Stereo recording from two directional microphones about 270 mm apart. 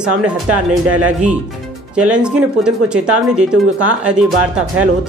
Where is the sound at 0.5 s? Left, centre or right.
Right.